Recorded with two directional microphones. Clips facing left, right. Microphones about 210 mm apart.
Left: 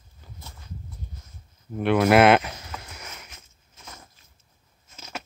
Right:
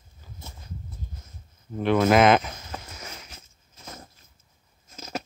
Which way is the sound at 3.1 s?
30° right (ahead or behind).